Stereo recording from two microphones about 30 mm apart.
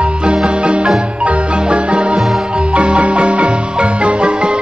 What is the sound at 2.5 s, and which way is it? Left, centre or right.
Marimba, right.